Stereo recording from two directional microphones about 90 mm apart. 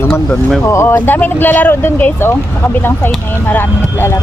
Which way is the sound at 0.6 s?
30° left (ahead or behind).